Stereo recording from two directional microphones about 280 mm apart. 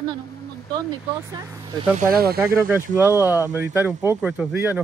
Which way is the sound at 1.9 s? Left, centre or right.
Right.